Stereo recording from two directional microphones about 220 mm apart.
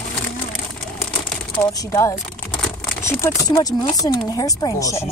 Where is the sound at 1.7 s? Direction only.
15° left (ahead or behind).